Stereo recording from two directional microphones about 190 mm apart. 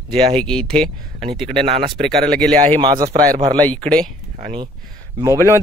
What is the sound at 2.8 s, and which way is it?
Speech, 25° right (ahead or behind).